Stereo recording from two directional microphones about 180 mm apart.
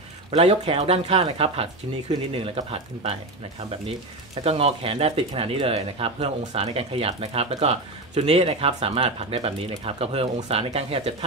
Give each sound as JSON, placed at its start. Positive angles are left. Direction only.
{"t": 0.3, "sound": "speech", "side_deg": -35}
{"t": 4.4, "sound": "speech", "side_deg": -35}